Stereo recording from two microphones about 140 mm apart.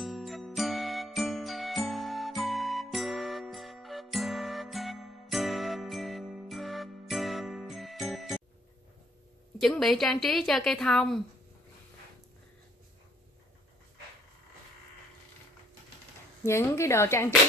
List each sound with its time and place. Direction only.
0.0 s jingle: centre (ahead or behind)
9.6 s a woman's voice: centre (ahead or behind)
16.4 s a woman's voice: 20° left (ahead or behind)